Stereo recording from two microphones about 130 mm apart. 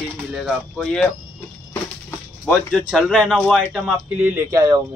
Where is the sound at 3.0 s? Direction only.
5° left (ahead or behind).